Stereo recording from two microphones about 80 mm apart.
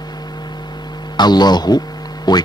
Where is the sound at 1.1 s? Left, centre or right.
Left.